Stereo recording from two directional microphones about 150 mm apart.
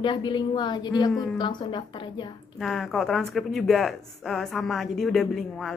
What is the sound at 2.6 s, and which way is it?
Speech, centre (ahead or behind).